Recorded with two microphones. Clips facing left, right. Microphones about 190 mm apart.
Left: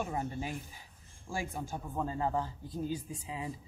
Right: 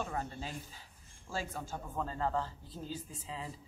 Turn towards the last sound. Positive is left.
turn(degrees=15)  # may be behind; listen again after turning